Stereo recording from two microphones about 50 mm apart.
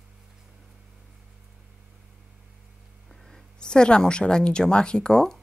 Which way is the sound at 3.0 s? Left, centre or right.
Centre.